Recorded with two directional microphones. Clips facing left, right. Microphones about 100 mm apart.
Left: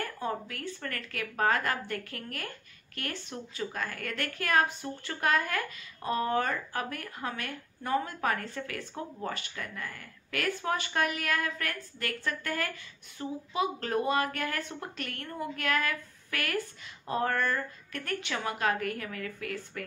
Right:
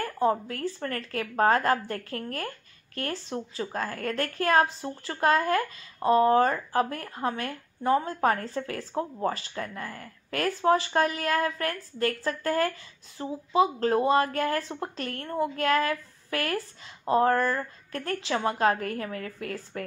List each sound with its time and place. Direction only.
0.2 s speech: 30° right (ahead or behind)